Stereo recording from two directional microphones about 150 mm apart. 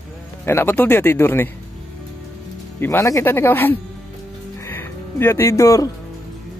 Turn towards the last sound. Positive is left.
turn(degrees=20)  # may be behind; listen again after turning